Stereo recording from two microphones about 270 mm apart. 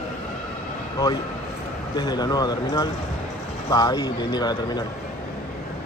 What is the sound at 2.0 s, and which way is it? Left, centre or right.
A man's voice, centre.